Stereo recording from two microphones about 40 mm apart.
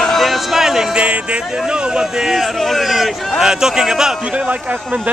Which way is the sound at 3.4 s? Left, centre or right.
Centre.